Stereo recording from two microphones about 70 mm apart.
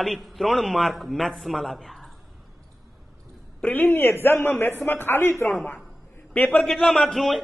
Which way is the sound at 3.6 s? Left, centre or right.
Left.